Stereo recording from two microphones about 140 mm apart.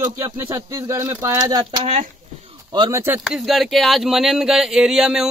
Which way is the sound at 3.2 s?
Centre (ahead or behind).